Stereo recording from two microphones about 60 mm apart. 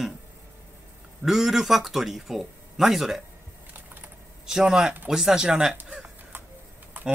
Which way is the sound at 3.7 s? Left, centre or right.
Right.